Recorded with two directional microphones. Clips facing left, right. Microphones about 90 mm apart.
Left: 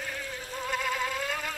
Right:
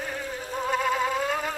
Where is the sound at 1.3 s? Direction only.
15° right (ahead or behind).